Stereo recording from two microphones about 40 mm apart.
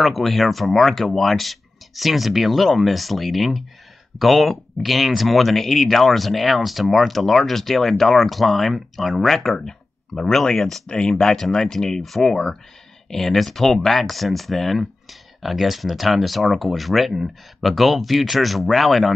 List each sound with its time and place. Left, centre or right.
0.0 s speech: centre
9.6 s speech: centre
10.9 s speech: left; by 19.1 s centre